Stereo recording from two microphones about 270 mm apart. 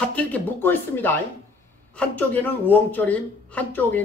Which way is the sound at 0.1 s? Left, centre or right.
Centre.